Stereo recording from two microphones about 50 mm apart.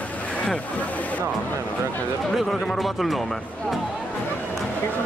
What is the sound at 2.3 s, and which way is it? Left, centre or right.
Speech, centre.